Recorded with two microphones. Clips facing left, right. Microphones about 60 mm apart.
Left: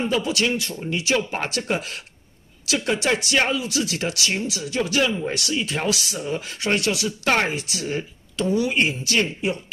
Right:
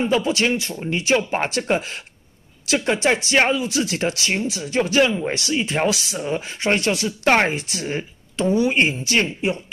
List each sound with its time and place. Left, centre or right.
0.0 s speech: centre
0.3 s speech: right